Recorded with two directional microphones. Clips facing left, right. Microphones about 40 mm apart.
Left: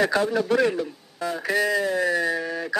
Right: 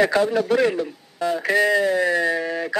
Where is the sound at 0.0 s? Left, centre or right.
Right.